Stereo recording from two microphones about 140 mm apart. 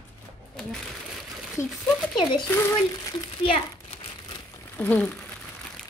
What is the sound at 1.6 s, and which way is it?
Speech, 65° left (ahead or behind).